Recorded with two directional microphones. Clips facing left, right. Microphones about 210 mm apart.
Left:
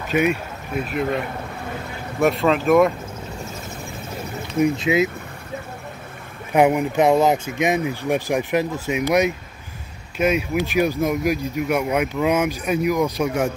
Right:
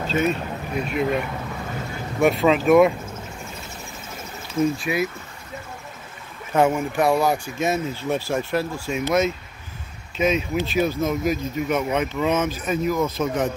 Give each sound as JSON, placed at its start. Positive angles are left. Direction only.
{"t": 0.0, "sound": "speech", "side_deg": 15}
{"t": 2.1, "sound": "speech", "side_deg": 0}
{"t": 4.6, "sound": "speech", "side_deg": 20}
{"t": 6.5, "sound": "speech", "side_deg": 15}